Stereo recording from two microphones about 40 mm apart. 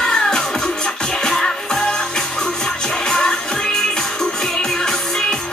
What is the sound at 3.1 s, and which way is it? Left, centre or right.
Music, centre.